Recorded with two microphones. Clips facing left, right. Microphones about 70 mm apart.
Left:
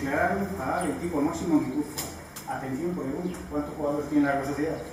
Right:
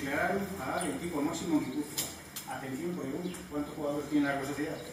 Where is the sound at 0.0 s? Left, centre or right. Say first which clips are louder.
Left 6 dB; centre.